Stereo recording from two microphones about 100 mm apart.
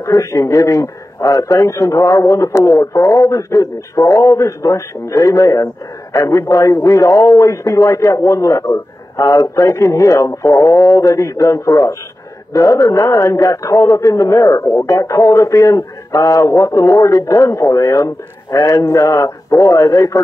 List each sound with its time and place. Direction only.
0.0 s a man's voice: 30° left (ahead or behind)